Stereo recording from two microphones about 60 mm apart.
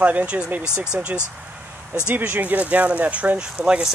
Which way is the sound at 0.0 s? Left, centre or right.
Right.